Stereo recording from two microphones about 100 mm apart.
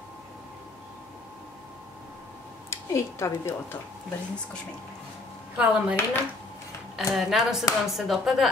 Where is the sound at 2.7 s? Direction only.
30° left (ahead or behind).